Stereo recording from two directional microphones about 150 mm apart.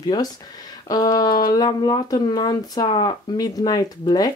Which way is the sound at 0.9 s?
25° left (ahead or behind).